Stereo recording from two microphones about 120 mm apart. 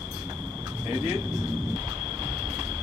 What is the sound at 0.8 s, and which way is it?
Speech, 30° right (ahead or behind).